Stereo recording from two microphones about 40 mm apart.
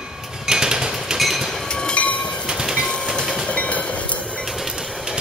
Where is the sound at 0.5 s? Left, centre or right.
Centre.